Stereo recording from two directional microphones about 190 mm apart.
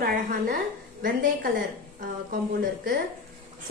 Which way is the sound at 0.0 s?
45° right (ahead or behind).